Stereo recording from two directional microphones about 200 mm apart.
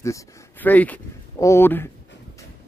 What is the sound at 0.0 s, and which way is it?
Speech, 10° left (ahead or behind).